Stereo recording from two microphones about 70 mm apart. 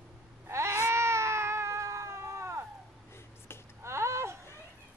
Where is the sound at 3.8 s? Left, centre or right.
Right.